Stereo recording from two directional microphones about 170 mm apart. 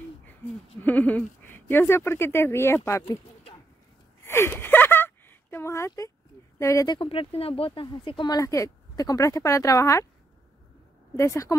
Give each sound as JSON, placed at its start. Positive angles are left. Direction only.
{"t": 0.3, "sound": "speech", "side_deg": 10}
{"t": 4.3, "sound": "a sound", "side_deg": 15}
{"t": 6.6, "sound": "speech", "side_deg": 20}
{"t": 7.0, "sound": "speech", "side_deg": 35}
{"t": 11.1, "sound": "speech", "side_deg": 15}